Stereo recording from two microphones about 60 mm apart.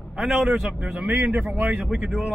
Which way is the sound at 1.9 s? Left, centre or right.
Centre.